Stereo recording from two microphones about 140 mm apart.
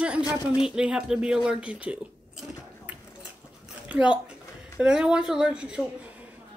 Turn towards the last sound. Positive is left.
turn(degrees=-5)  # may be behind; listen again after turning